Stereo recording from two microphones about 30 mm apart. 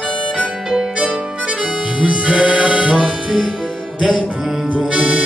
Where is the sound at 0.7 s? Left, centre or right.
Right.